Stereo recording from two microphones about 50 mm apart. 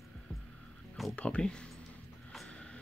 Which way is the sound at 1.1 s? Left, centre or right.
Left.